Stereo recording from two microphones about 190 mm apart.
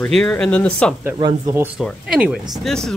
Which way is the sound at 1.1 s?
25° right (ahead or behind).